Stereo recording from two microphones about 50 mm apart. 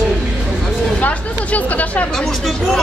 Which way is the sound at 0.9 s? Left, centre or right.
Left.